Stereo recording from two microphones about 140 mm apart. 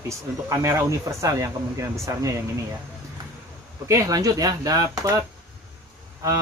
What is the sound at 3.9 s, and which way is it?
Speech, 25° right (ahead or behind).